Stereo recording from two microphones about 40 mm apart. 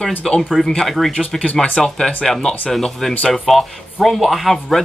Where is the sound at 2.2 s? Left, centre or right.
Centre.